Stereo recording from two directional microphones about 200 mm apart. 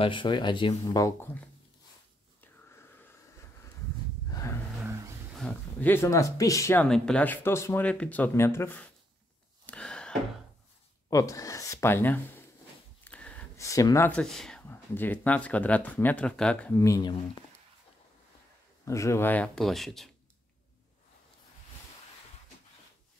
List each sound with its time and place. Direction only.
0.0 s speech: 25° left (ahead or behind)
2.8 s a sound: 10° left (ahead or behind)
4.8 s vehicle: 15° right (ahead or behind)
5.4 s speech: 5° left (ahead or behind)
9.7 s a sound: 5° left (ahead or behind)
11.1 s speech: 15° left (ahead or behind)
18.9 s speech: 15° left (ahead or behind)